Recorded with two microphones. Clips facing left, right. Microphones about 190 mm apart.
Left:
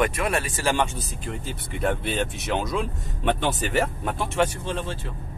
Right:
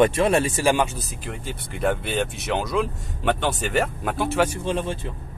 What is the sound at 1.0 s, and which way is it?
Speech, centre (ahead or behind).